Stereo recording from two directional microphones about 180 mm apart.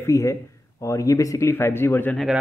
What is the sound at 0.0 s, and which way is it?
Speech, 15° left (ahead or behind).